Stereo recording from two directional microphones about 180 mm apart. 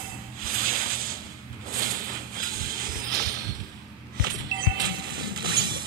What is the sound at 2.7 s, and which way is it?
Music, 55° right (ahead or behind).